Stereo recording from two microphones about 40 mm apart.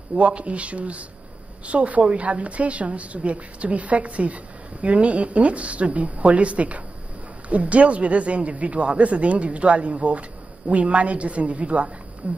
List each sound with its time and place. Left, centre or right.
0.2 s speech: right